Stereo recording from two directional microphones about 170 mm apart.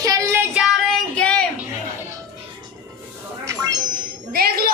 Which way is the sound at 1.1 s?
5° left (ahead or behind).